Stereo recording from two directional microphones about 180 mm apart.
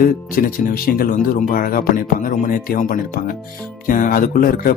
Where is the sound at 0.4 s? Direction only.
55° left (ahead or behind).